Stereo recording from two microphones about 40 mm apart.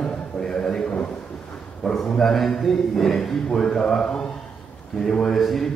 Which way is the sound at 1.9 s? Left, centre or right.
Centre.